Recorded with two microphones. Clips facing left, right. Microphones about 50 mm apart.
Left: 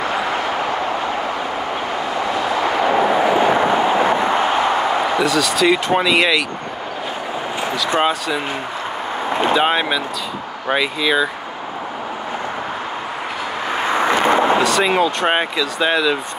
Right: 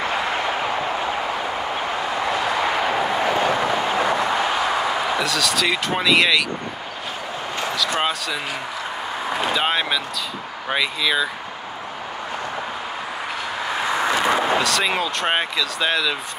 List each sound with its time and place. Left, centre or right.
2.1 s vehicle: centre; by 4.2 s left
5.2 s speech: centre
8.0 s speech: centre
9.5 s speech: centre
13.9 s vehicle: left
14.6 s speech: centre